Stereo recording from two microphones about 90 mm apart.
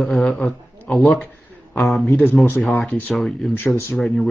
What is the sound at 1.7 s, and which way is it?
Speech, 20° left (ahead or behind).